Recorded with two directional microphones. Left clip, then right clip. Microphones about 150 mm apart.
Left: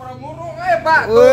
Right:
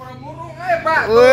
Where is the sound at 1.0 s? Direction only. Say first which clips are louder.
Even; 10° left (ahead or behind).